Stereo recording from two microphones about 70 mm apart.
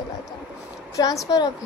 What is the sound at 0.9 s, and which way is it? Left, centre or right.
Speech, left.